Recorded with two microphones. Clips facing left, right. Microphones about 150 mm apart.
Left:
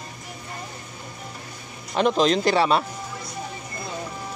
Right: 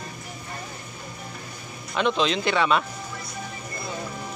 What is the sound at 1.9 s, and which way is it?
Speech, 40° left (ahead or behind).